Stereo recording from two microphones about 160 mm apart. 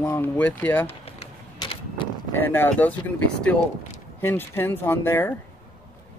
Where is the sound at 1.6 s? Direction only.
30° left (ahead or behind).